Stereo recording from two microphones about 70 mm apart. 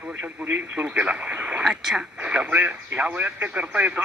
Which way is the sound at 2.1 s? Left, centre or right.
Centre.